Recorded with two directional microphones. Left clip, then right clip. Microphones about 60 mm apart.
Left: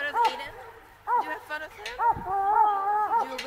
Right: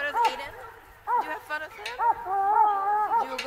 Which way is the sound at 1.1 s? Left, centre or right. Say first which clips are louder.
Even; right.